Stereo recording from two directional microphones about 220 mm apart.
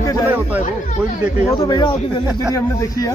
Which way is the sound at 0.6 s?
35° left (ahead or behind).